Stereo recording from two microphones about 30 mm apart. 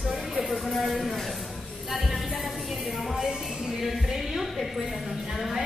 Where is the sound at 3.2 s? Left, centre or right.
Centre.